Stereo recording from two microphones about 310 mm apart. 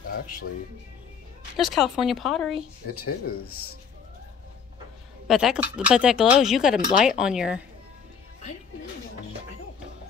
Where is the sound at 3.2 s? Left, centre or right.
Left.